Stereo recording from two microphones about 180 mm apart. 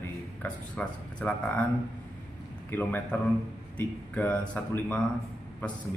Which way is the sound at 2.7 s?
10° left (ahead or behind).